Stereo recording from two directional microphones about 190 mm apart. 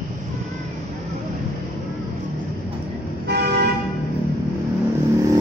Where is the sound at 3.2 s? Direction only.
60° right (ahead or behind).